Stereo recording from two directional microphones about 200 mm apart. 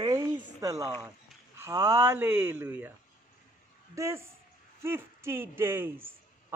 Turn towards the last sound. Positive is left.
turn(degrees=-10)  # may be behind; listen again after turning